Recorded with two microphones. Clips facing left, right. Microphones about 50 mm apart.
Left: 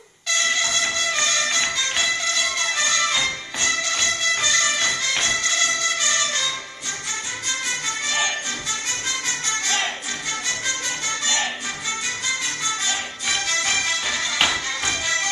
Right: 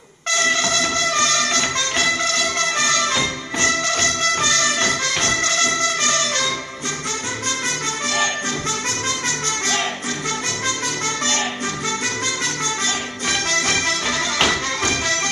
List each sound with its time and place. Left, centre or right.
0.4 s music: right
12.8 s music: right